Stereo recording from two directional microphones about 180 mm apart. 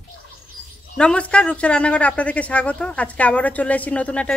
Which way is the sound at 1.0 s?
5° left (ahead or behind).